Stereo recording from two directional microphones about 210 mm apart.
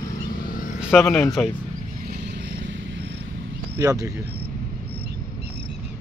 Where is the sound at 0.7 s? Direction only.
Centre (ahead or behind).